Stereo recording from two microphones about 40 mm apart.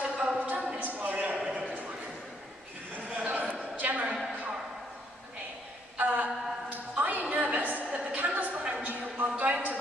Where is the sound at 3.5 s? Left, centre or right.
Right.